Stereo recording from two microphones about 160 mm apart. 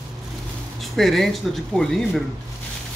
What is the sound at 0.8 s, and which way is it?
Speech, centre (ahead or behind).